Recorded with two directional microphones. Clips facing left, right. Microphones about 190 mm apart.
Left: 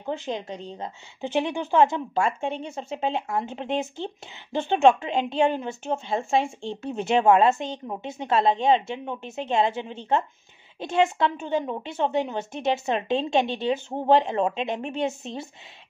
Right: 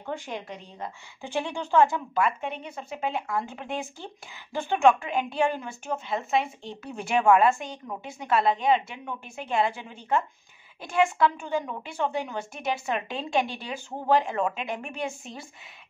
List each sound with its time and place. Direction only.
0.0 s a woman's voice: 20° left (ahead or behind)